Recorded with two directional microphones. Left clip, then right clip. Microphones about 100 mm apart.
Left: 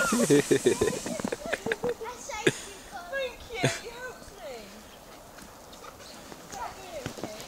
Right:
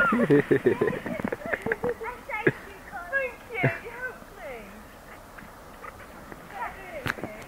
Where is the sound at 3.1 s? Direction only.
45° left (ahead or behind).